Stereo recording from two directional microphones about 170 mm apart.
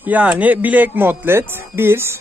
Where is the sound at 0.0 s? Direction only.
10° right (ahead or behind).